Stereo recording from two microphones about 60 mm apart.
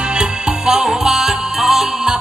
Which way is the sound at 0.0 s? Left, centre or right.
Centre.